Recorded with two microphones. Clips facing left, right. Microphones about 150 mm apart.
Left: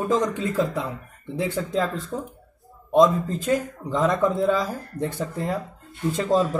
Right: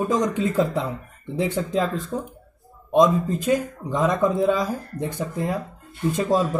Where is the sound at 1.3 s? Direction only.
20° right (ahead or behind).